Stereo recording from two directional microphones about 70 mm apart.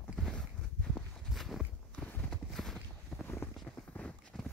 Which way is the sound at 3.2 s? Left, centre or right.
Left.